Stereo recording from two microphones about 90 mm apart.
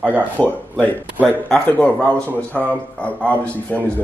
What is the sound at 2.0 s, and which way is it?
Speech, 10° left (ahead or behind).